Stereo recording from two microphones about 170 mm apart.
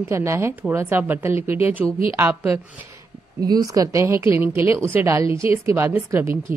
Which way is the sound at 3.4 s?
20° right (ahead or behind).